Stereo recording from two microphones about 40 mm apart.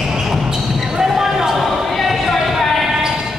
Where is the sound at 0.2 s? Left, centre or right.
Centre.